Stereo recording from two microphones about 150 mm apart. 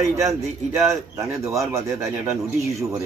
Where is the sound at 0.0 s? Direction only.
20° right (ahead or behind).